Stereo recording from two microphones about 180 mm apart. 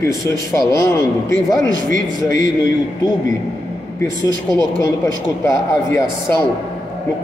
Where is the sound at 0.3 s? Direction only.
15° left (ahead or behind).